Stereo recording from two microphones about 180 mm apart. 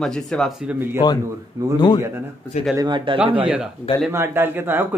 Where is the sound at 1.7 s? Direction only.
25° left (ahead or behind).